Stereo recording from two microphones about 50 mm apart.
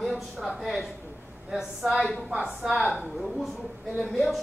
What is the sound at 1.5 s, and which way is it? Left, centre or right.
A woman's voice, centre.